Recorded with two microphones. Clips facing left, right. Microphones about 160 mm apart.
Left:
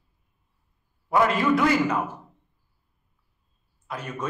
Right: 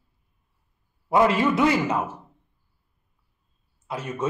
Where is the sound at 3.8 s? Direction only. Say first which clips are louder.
Right 3 dB; 25° right (ahead or behind).